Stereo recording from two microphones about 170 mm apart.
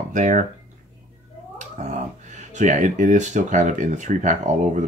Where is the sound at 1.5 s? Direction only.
45° right (ahead or behind).